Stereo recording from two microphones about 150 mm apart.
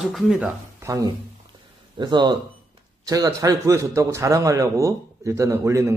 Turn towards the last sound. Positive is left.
turn(degrees=-20)  # may be behind; listen again after turning